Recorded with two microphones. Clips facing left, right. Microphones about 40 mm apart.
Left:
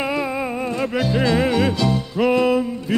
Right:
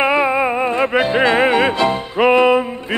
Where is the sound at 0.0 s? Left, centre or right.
Right.